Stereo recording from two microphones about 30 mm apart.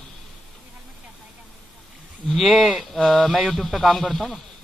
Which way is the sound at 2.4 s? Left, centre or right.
Centre.